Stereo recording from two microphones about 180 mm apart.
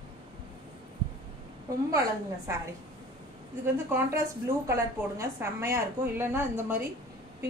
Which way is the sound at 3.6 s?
10° right (ahead or behind).